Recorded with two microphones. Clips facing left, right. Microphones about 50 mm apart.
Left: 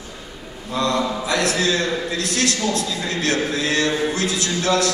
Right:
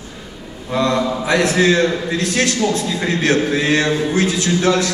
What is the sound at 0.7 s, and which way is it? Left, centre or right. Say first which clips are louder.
A man's voice: right 4 dB; right.